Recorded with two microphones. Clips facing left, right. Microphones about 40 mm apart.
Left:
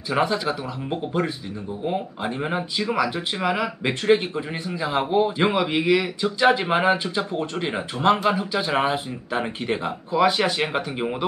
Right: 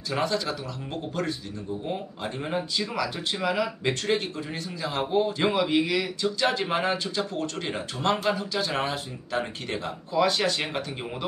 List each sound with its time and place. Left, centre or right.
0.1 s speech: centre